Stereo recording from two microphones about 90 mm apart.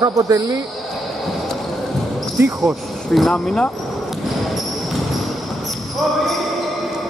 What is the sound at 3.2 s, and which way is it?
Speech, 10° left (ahead or behind).